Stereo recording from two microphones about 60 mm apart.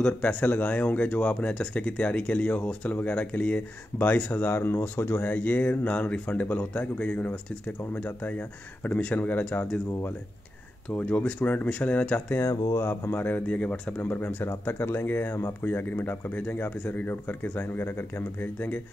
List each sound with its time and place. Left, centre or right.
0.0 s speech: left
4.4 s speech: left
10.9 s speech: left
12.7 s speech: left
13.5 s speech: left
14.1 s speech: left